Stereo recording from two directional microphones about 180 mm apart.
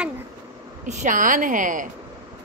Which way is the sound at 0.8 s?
45° right (ahead or behind).